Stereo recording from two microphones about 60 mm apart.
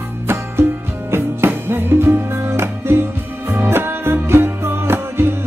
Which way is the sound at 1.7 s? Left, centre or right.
Right.